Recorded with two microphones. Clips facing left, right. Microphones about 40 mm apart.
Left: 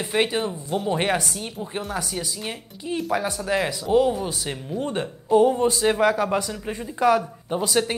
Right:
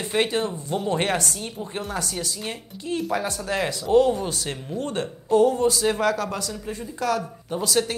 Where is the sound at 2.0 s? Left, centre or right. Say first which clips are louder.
Even; centre.